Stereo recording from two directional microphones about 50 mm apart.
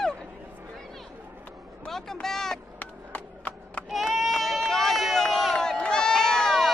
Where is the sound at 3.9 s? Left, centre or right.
Centre.